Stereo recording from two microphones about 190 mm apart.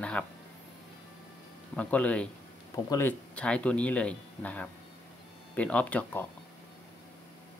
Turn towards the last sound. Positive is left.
turn(degrees=10)  # may be behind; listen again after turning